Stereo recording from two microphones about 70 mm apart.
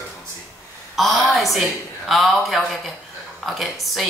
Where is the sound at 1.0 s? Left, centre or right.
Centre.